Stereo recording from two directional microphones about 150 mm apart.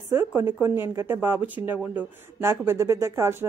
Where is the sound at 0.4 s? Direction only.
15° right (ahead or behind).